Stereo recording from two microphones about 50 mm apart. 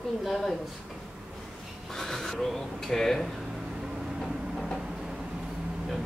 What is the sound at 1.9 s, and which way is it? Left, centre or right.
Speech, centre.